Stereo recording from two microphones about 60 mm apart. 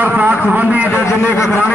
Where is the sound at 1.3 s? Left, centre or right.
Left.